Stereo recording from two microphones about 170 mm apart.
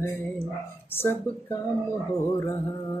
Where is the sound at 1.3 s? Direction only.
15° left (ahead or behind).